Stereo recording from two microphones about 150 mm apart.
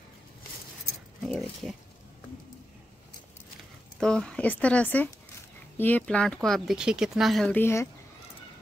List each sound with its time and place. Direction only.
1.2 s speech: centre (ahead or behind)
4.0 s speech: 5° left (ahead or behind)
7.5 s speech: 15° left (ahead or behind)